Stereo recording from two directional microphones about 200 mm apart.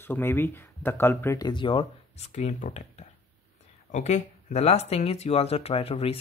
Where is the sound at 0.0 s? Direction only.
10° left (ahead or behind).